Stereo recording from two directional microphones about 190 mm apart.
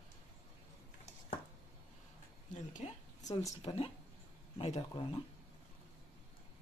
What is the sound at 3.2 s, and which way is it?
Speech, 20° left (ahead or behind).